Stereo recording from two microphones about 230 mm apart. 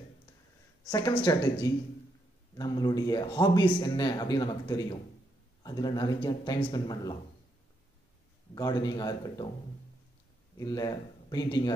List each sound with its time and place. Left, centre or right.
0.8 s speech: centre
8.5 s speech: centre
10.6 s speech: centre